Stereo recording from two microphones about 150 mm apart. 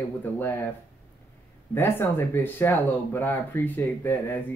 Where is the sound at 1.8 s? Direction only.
15° left (ahead or behind).